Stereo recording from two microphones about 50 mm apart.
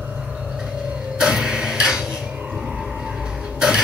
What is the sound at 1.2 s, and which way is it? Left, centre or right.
Tick-tock, centre.